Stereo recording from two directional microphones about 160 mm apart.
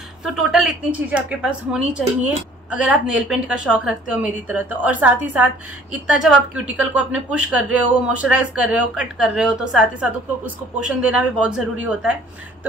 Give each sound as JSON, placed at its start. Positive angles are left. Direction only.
{"t": 0.2, "sound": "a woman's voice", "side_deg": -5}